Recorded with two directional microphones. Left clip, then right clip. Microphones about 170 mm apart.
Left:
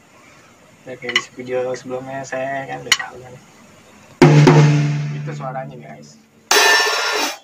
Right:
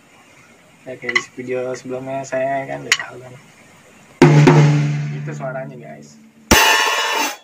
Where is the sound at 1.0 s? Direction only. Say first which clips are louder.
Right 1 dB; 5° right (ahead or behind).